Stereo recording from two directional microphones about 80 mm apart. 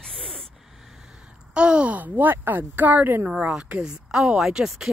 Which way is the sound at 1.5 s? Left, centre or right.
Centre.